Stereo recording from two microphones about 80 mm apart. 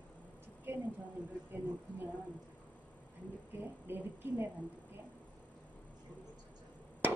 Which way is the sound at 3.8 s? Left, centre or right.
Right.